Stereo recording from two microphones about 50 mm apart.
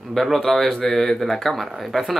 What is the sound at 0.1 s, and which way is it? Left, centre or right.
Speech, centre.